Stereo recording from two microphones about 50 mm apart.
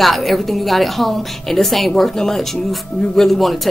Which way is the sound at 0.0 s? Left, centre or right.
Centre.